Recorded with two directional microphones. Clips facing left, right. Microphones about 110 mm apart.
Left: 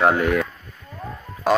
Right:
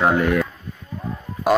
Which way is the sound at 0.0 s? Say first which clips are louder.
Even; centre (ahead or behind).